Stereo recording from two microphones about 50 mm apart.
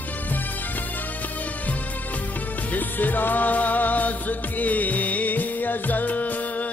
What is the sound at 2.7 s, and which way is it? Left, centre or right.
Music, left.